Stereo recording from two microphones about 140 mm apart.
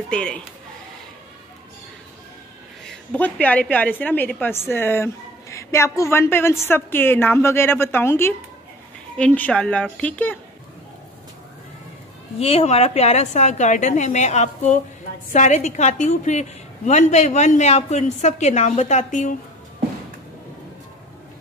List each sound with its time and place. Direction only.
0.1 s a woman's voice: 5° left (ahead or behind)
3.1 s a woman's voice: 10° left (ahead or behind)
12.4 s a woman's voice: 45° left (ahead or behind); by 19.3 s 65° left (ahead or behind)